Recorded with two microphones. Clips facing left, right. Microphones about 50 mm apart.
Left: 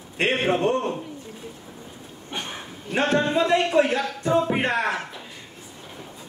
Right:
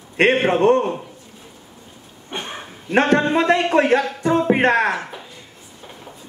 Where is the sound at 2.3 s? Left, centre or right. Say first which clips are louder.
Right 3 dB; right.